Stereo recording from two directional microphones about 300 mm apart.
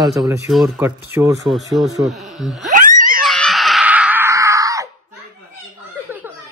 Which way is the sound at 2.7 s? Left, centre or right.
Right.